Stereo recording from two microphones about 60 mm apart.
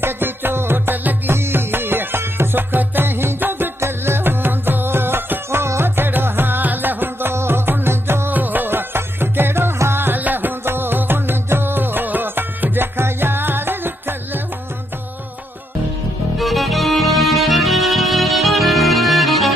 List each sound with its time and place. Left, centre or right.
0.0 s music: right
8.3 s music: right
16.3 s music: centre